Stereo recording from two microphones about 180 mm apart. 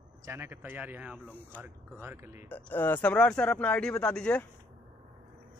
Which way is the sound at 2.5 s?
10° left (ahead or behind).